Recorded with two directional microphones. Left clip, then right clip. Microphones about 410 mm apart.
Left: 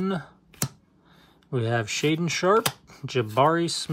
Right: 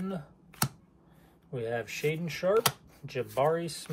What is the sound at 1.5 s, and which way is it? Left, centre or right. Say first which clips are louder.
Speech: left 7 dB; centre.